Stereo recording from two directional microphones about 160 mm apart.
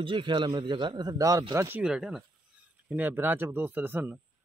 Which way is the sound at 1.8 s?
5° right (ahead or behind).